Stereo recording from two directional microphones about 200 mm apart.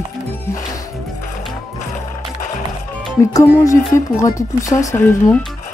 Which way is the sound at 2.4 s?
40° left (ahead or behind).